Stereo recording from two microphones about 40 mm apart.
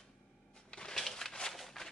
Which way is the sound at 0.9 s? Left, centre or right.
Centre.